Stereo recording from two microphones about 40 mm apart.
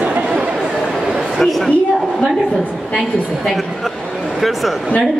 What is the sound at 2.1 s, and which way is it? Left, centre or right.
Speech, centre.